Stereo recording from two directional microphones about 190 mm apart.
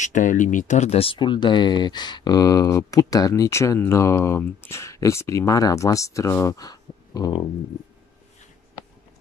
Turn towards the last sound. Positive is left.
turn(degrees=20)  # may be behind; listen again after turning